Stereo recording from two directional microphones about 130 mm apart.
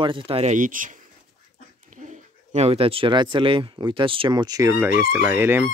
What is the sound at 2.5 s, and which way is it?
Speech, 55° right (ahead or behind).